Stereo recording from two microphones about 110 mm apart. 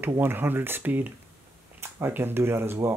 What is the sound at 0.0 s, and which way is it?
Speech, 20° right (ahead or behind).